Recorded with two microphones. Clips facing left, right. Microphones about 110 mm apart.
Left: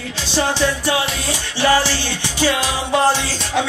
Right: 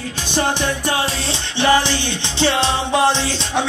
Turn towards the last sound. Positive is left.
turn(degrees=-25)  # may be behind; listen again after turning